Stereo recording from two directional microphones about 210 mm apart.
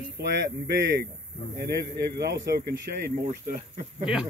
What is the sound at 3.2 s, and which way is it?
Speech, 35° right (ahead or behind).